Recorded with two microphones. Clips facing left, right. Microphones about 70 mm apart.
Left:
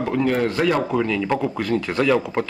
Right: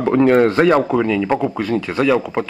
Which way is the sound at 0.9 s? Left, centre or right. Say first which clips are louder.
Right 4 dB; centre.